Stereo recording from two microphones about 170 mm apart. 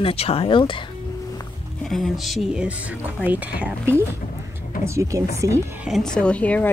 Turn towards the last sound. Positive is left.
turn(degrees=10)  # may be behind; listen again after turning